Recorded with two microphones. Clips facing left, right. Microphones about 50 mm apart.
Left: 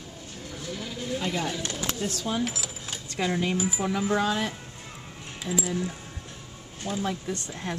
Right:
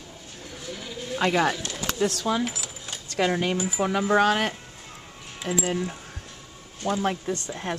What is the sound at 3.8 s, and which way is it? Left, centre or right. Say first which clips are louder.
Speech: right 7 dB; right.